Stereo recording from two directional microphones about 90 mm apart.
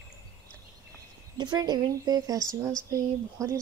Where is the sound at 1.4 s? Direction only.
55° right (ahead or behind).